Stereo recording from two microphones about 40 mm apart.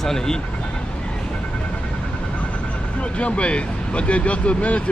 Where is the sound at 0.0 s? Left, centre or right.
Centre.